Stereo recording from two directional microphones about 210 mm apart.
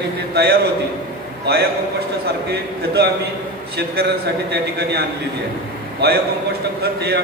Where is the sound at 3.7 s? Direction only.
50° right (ahead or behind).